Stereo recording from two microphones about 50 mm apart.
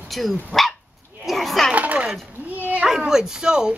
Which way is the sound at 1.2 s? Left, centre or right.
Centre.